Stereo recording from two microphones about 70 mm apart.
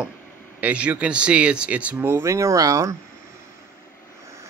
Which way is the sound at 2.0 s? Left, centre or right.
Right.